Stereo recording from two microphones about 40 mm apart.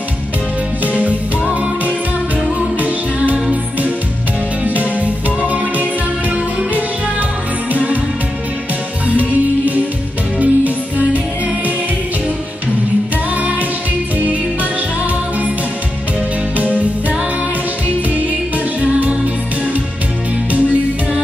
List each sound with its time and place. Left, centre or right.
1.5 s music: right
4.6 s music: right
9.0 s music: right
13.4 s music: right
16.5 s music: right
18.8 s music: right